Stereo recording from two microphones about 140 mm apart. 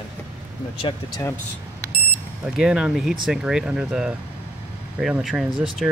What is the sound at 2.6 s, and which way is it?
Speech, 5° right (ahead or behind).